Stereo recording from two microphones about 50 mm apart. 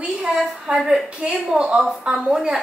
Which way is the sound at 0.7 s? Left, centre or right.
Centre.